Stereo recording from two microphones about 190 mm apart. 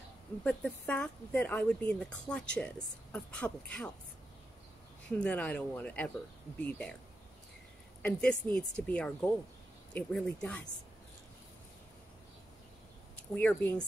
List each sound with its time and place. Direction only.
0.4 s speech: 5° left (ahead or behind)
5.2 s speech: 5° left (ahead or behind)
8.0 s speech: 5° left (ahead or behind)
13.3 s speech: 5° left (ahead or behind)